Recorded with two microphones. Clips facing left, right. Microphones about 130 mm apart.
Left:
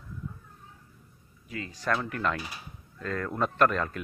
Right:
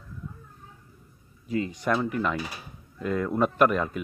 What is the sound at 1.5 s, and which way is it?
A man's voice, 20° right (ahead or behind).